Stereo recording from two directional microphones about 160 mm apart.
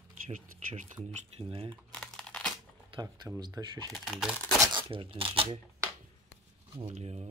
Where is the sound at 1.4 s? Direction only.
35° right (ahead or behind).